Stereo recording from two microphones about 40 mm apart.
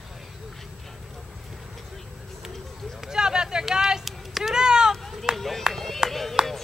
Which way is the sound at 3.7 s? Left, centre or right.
Centre.